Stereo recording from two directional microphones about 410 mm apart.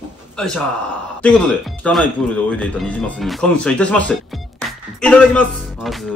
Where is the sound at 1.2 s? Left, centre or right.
Centre.